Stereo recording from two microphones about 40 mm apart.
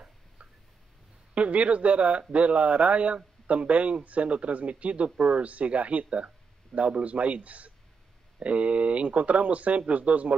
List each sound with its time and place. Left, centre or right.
1.3 s speech: right